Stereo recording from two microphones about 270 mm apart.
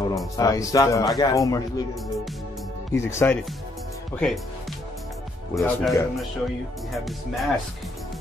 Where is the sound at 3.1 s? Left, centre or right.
Centre.